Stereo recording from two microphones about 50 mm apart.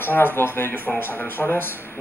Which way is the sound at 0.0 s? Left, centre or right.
Left.